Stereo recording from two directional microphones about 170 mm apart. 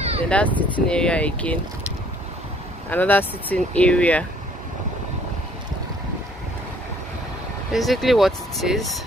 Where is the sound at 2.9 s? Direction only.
10° left (ahead or behind).